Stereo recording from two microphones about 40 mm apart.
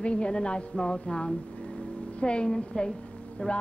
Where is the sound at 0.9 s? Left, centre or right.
Left.